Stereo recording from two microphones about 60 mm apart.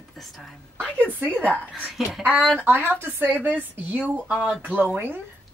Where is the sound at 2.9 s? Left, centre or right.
Right.